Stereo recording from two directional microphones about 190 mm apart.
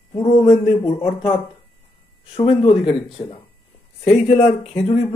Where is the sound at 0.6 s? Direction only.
30° left (ahead or behind).